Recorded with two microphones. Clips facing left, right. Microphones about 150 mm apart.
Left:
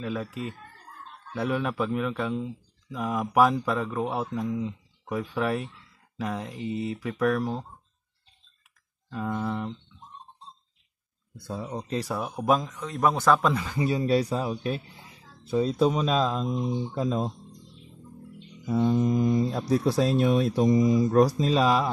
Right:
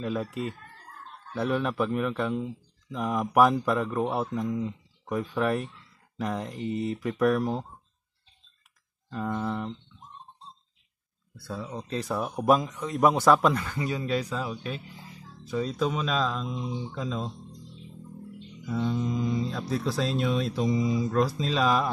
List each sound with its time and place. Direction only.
0.0 s a man's voice: centre (ahead or behind)
9.1 s speech: 5° left (ahead or behind)
11.3 s speech: 20° left (ahead or behind)
12.2 s a man's voice: centre (ahead or behind)
13.5 s speech: 10° left (ahead or behind)
13.7 s speech: 30° left (ahead or behind)
18.7 s speech: 50° left (ahead or behind)